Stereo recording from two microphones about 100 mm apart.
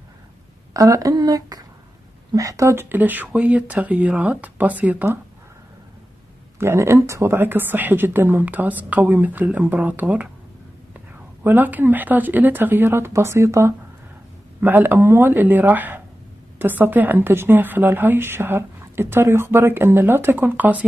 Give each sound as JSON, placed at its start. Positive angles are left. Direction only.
{"t": 0.7, "sound": "a woman's voice", "side_deg": -35}
{"t": 6.6, "sound": "a woman's voice", "side_deg": -25}
{"t": 11.4, "sound": "a woman's voice", "side_deg": -20}
{"t": 14.6, "sound": "a woman's voice", "side_deg": -20}